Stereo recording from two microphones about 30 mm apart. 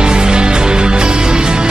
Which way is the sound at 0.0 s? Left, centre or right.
Right.